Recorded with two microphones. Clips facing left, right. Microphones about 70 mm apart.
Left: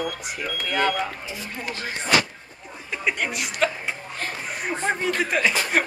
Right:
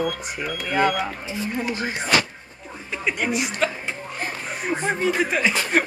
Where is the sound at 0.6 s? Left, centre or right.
Centre.